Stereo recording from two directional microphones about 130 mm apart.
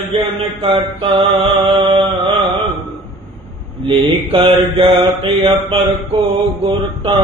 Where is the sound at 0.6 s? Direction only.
45° right (ahead or behind).